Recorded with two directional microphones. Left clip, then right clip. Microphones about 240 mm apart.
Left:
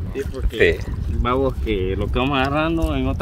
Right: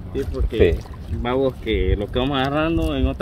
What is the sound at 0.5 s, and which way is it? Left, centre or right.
Speech, left.